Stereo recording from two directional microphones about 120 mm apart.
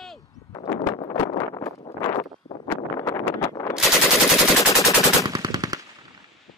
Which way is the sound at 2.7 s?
25° left (ahead or behind).